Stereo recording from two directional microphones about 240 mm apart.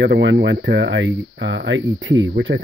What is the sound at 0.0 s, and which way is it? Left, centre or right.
Speech, right.